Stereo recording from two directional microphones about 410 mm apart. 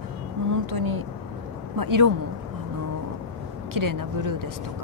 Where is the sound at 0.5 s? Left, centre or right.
Right.